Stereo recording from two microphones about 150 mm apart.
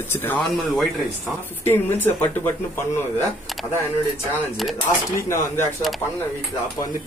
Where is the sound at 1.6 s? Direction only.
15° left (ahead or behind).